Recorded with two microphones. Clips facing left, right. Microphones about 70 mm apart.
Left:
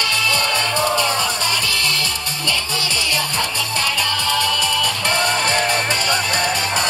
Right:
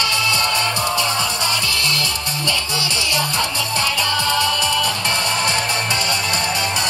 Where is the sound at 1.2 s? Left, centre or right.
Right.